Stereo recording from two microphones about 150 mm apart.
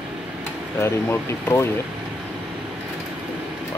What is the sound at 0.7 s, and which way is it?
Speech, 15° left (ahead or behind).